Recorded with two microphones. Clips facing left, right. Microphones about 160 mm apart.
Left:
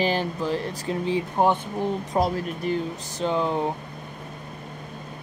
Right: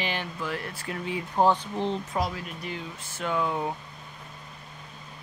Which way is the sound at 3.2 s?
30° left (ahead or behind).